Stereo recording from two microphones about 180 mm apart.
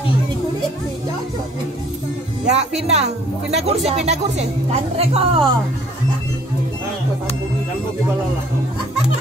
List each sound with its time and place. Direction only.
2.4 s speech: 35° right (ahead or behind)